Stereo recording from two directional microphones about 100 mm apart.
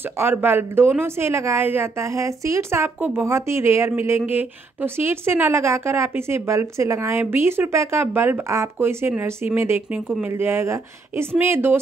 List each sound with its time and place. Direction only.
0.2 s a woman's voice: 20° right (ahead or behind)